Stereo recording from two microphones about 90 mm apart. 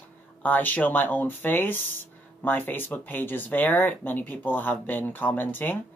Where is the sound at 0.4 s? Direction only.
20° left (ahead or behind).